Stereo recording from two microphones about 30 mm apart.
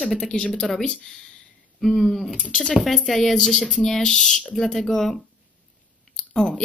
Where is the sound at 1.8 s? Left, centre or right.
Centre.